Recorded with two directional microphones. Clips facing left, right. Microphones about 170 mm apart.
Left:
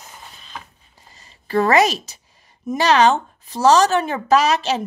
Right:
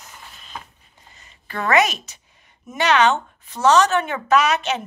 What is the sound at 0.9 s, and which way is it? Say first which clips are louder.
Speech: left 1 dB; 35° left (ahead or behind).